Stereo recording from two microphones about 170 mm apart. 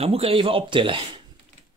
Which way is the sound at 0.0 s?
35° right (ahead or behind).